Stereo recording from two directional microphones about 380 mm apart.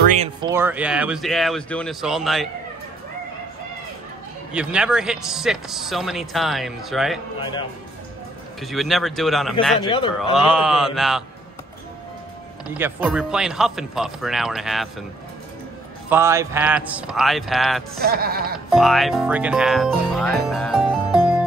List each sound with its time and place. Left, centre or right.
0.1 s speech: centre
4.5 s speech: centre
7.3 s a man's voice: centre
8.5 s speech: centre
9.8 s a man's voice: centre
10.3 s speech: centre
12.7 s speech: centre
16.1 s speech: centre
18.0 s speech: right
18.7 s speech: centre